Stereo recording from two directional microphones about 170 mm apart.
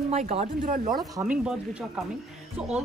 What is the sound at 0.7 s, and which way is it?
Speech, 55° right (ahead or behind).